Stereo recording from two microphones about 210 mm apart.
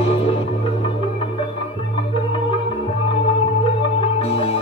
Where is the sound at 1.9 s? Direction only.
25° left (ahead or behind).